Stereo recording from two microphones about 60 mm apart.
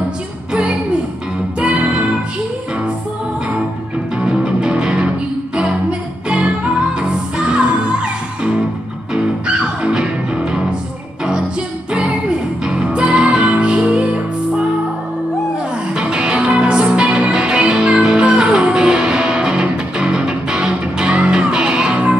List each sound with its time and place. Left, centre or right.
0.5 s music: centre
4.2 s music: centre
12.6 s music: centre
15.9 s music: centre